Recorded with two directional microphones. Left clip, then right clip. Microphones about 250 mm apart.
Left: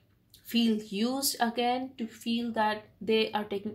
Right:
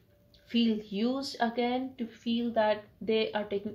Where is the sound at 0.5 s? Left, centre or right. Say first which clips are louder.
Left 1 dB; left.